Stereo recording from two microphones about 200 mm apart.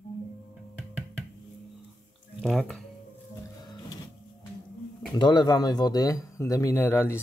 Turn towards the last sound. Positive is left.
turn(degrees=10)  # may be behind; listen again after turning